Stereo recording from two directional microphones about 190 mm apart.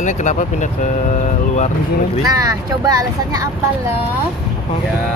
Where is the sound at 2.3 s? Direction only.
20° right (ahead or behind).